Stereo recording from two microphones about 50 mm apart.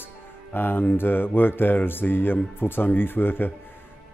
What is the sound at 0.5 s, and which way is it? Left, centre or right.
A man's voice, left.